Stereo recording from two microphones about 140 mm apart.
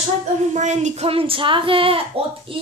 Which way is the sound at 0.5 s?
55° right (ahead or behind).